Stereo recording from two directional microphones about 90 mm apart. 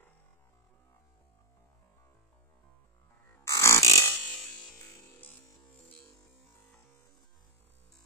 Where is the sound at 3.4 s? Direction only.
35° left (ahead or behind).